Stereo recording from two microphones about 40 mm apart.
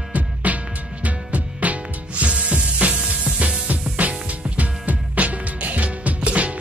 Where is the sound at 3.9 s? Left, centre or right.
Right.